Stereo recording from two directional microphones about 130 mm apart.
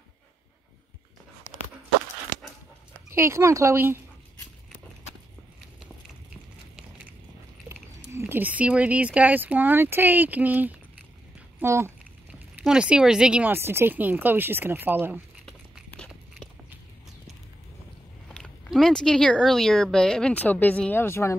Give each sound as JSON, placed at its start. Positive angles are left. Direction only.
{"t": 3.1, "sound": "speech", "side_deg": -20}
{"t": 6.3, "sound": "a sound", "side_deg": -10}
{"t": 7.6, "sound": "speech", "side_deg": -20}
{"t": 12.6, "sound": "speech", "side_deg": -5}
{"t": 18.3, "sound": "a sound", "side_deg": 10}
{"t": 18.7, "sound": "speech", "side_deg": 5}